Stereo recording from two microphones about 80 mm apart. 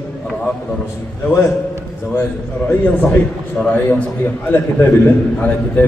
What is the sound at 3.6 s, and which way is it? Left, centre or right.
Speech, centre.